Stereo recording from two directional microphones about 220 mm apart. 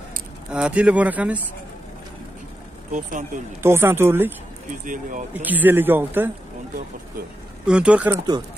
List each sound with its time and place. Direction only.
0.5 s speech: 5° right (ahead or behind)
2.9 s speech: 35° right (ahead or behind)
3.6 s speech: 10° right (ahead or behind)
4.8 s speech: 35° right (ahead or behind)
5.3 s speech: 10° right (ahead or behind)
7.6 s speech: 5° right (ahead or behind)